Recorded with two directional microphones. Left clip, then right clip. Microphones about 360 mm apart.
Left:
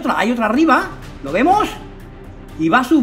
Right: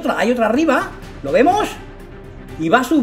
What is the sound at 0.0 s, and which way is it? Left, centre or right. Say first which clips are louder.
Speech: right 1 dB; centre.